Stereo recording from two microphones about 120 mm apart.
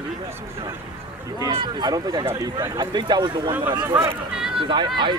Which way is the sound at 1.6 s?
35° right (ahead or behind).